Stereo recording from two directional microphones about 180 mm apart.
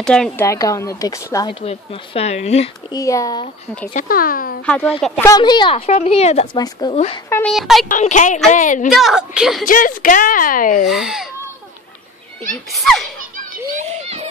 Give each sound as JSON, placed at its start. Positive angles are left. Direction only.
{"t": 0.0, "sound": "a woman's voice", "side_deg": 5}
{"t": 0.5, "sound": "a woman's voice", "side_deg": 15}
{"t": 1.5, "sound": "speech", "side_deg": 35}
{"t": 2.9, "sound": "a woman's voice", "side_deg": 20}
{"t": 3.9, "sound": "speech", "side_deg": 50}
{"t": 5.2, "sound": "a woman's voice", "side_deg": 20}
{"t": 7.2, "sound": "a woman's voice", "side_deg": 15}
{"t": 7.5, "sound": "a woman's voice", "side_deg": 0}
{"t": 7.9, "sound": "speech", "side_deg": 45}
{"t": 8.8, "sound": "a woman's voice", "side_deg": 0}
{"t": 9.7, "sound": "speech", "side_deg": 50}
{"t": 10.9, "sound": "a woman's voice", "side_deg": 0}
{"t": 12.7, "sound": "a woman's voice", "side_deg": 0}
{"t": 13.7, "sound": "a sound", "side_deg": -35}